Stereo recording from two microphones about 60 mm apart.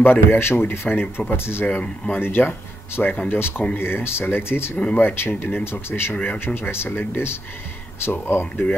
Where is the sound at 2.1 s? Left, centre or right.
Left.